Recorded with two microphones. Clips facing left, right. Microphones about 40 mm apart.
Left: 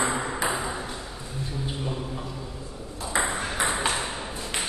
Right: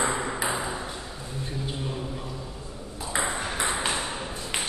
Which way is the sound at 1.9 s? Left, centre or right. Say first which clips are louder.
Left 1 dB; centre.